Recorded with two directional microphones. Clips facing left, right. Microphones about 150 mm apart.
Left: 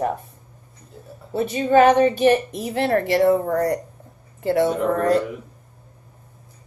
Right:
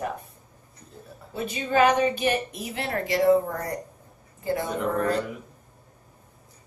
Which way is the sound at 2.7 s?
55° left (ahead or behind).